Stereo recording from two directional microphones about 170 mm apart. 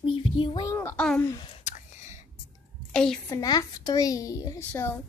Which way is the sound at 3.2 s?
20° left (ahead or behind).